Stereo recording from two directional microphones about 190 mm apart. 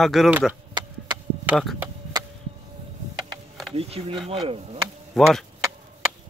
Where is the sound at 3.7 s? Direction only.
30° right (ahead or behind).